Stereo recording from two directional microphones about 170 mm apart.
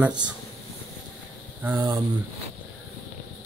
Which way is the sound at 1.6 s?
15° right (ahead or behind).